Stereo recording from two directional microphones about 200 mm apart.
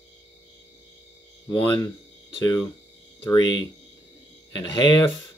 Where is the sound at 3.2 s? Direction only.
20° left (ahead or behind).